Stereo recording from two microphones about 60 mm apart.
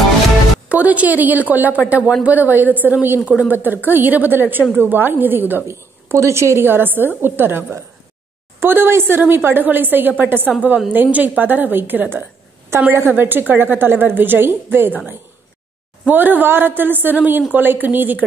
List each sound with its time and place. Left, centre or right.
0.7 s a woman's voice: right
5.7 s speech: right
6.6 s speech: right
16.1 s speech: right